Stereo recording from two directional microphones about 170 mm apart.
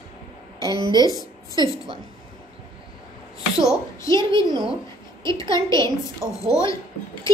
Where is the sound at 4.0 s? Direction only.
20° left (ahead or behind).